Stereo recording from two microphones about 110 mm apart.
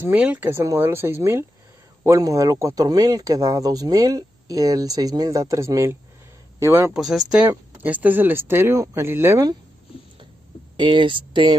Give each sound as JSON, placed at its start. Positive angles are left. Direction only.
{"t": 0.0, "sound": "a man's voice", "side_deg": -15}
{"t": 6.9, "sound": "speech", "side_deg": 0}
{"t": 7.4, "sound": "speech", "side_deg": -15}
{"t": 10.8, "sound": "speech", "side_deg": -50}